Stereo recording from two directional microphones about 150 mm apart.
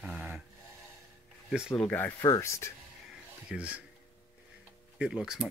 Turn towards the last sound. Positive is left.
turn(degrees=-5)  # may be behind; listen again after turning